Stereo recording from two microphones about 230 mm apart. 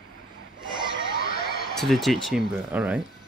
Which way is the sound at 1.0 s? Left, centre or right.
Left.